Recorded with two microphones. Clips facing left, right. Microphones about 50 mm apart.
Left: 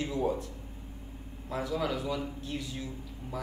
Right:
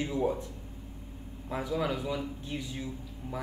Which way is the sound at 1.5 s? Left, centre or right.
Centre.